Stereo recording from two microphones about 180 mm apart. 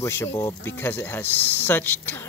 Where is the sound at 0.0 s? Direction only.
15° left (ahead or behind).